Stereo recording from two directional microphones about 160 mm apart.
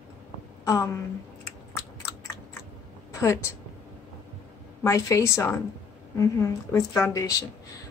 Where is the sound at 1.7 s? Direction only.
15° left (ahead or behind).